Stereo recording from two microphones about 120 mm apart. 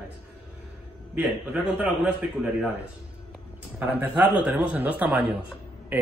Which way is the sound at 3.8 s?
15° right (ahead or behind).